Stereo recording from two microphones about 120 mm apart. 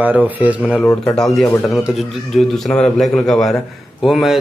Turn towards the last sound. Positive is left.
turn(degrees=0)  # may be behind; listen again after turning